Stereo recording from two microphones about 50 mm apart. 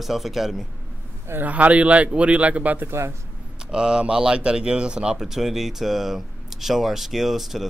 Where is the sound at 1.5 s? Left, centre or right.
Right.